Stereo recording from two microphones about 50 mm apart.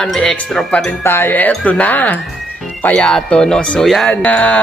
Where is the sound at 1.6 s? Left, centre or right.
Left.